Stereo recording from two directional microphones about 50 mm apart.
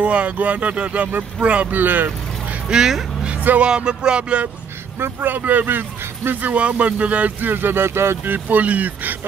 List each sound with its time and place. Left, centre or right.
0.0 s speech: right
1.8 s speech: right
2.7 s speech: centre
4.9 s speech: right
6.5 s speech: right
8.2 s speech: right